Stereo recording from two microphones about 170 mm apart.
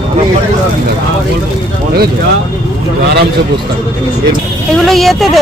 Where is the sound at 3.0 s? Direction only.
70° right (ahead or behind).